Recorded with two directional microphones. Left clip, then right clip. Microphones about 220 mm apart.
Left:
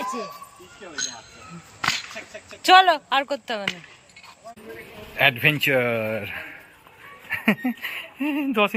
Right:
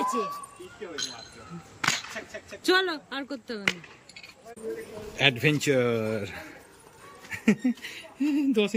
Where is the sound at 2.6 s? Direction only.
5° right (ahead or behind).